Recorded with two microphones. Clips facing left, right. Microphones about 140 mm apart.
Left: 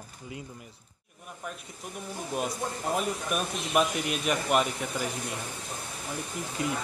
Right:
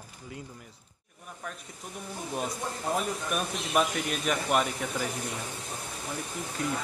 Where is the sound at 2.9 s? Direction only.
5° left (ahead or behind).